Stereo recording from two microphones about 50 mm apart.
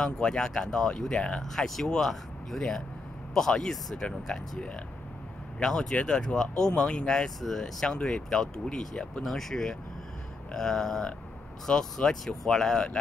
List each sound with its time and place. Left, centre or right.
0.0 s speech: centre
1.4 s speech: centre
9.2 s speech: centre